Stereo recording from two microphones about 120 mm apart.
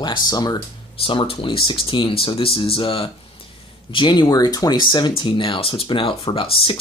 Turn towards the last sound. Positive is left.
turn(degrees=50)  # may be behind; listen again after turning